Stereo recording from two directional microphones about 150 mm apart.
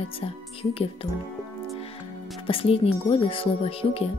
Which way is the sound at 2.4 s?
40° left (ahead or behind).